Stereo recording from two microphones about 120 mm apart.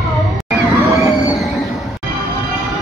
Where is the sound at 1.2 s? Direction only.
30° left (ahead or behind).